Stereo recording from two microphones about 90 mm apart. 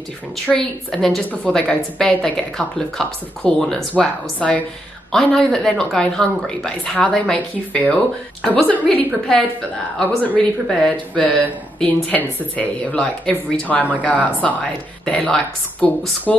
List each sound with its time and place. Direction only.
0.5 s a woman's voice: 10° left (ahead or behind)
9.9 s a woman's voice: 10° left (ahead or behind)